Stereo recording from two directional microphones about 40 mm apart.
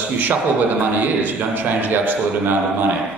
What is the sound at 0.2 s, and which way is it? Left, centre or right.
A man's voice, right.